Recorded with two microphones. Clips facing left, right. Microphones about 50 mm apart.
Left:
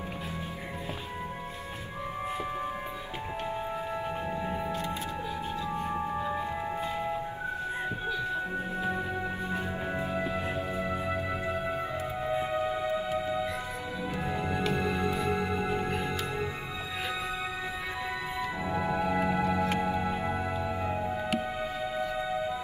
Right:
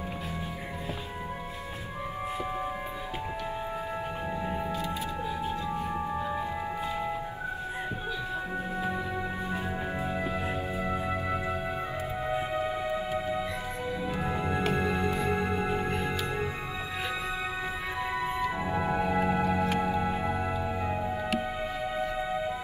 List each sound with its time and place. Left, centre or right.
5.9 s music: centre
9.9 s music: centre
14.2 s music: centre
18.7 s music: centre
20.9 s music: centre